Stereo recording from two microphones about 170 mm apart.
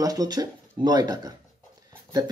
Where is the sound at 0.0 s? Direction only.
20° right (ahead or behind).